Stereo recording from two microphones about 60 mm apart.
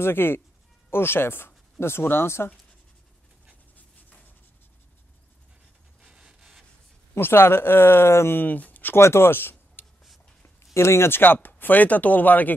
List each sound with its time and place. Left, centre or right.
0.0 s speech: left
6.0 s rub: centre
7.2 s speech: left
9.0 s speech: left